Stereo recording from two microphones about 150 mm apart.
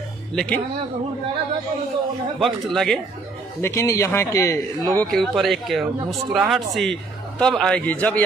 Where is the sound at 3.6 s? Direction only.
20° left (ahead or behind).